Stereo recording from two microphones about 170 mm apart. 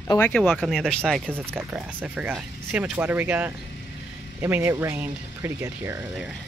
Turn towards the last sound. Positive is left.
turn(degrees=-10)  # may be behind; listen again after turning